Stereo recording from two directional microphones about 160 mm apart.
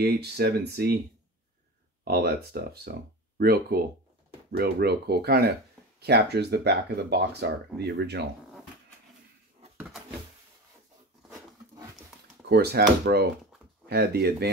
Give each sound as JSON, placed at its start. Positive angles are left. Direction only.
{"t": 0.0, "sound": "speech", "side_deg": -85}
{"t": 2.0, "sound": "speech", "side_deg": -85}
{"t": 3.3, "sound": "speech", "side_deg": -75}
{"t": 12.4, "sound": "speech", "side_deg": -80}